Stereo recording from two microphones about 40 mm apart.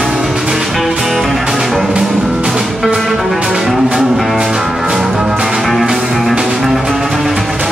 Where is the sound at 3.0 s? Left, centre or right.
Centre.